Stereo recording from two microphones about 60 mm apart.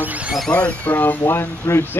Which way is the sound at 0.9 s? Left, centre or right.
Left.